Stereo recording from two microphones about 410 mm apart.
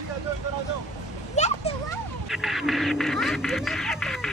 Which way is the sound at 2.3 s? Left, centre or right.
Centre.